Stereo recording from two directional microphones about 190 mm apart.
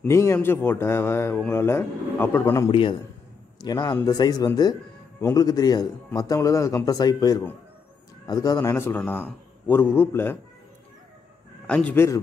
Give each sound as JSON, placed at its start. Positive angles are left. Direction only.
{"t": 0.0, "sound": "speech", "side_deg": 15}
{"t": 2.7, "sound": "speech", "side_deg": 25}
{"t": 11.6, "sound": "speech", "side_deg": 5}